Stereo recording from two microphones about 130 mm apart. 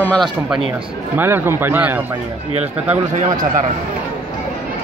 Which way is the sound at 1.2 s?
15° right (ahead or behind).